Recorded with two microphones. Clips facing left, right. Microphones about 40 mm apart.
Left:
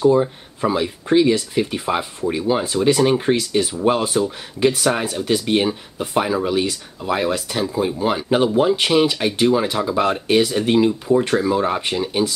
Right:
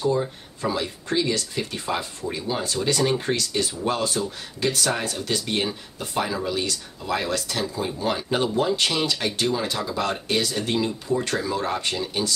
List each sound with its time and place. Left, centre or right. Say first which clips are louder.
0.1 s speech: left 8 dB; left